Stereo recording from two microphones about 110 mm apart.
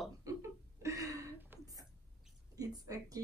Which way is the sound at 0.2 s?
25° right (ahead or behind).